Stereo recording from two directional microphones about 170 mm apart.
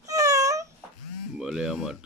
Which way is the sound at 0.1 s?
20° right (ahead or behind).